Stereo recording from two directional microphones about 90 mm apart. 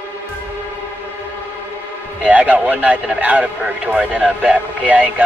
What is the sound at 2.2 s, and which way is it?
A man's voice, 15° right (ahead or behind).